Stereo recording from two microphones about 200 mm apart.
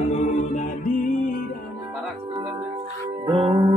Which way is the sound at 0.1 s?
40° left (ahead or behind).